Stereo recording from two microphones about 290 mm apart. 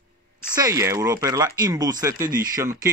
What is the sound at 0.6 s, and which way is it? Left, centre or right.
Speech, centre.